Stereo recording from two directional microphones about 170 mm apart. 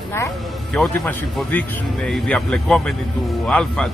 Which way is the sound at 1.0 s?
10° left (ahead or behind).